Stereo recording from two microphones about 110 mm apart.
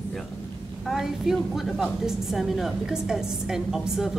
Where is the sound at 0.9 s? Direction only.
5° right (ahead or behind).